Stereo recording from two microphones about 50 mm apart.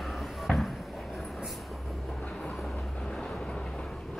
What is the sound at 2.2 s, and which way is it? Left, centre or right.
Train, left.